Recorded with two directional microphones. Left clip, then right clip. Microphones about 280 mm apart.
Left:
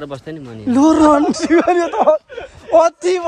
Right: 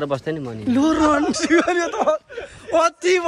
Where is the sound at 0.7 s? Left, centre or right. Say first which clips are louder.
Left 6 dB; left.